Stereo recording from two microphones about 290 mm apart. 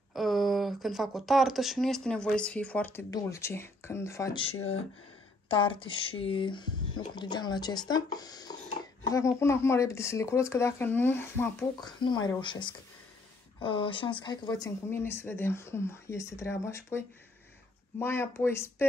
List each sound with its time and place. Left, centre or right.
0.1 s speech: centre